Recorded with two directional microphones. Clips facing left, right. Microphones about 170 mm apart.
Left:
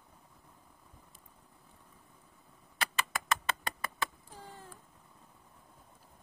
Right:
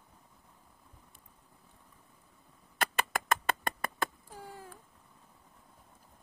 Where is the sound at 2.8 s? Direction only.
50° right (ahead or behind).